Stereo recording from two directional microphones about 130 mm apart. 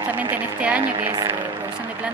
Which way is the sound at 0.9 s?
30° right (ahead or behind).